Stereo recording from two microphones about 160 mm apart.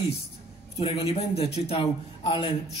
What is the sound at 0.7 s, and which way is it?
A man's voice, 35° left (ahead or behind).